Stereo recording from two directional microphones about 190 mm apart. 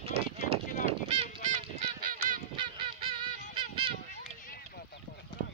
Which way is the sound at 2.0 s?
45° right (ahead or behind).